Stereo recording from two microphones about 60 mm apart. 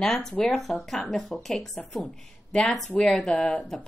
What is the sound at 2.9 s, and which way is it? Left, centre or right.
Speech, centre.